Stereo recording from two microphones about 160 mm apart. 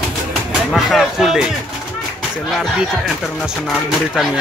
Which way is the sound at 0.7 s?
Centre (ahead or behind).